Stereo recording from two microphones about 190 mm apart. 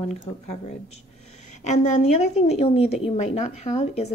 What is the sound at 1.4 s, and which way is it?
A woman's voice, 40° left (ahead or behind).